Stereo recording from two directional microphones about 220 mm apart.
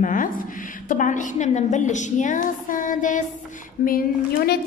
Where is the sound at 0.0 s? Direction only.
35° left (ahead or behind).